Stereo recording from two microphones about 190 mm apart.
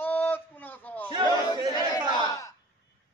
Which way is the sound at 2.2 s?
15° left (ahead or behind).